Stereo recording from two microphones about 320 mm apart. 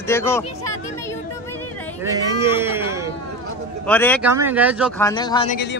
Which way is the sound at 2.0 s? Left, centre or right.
Centre.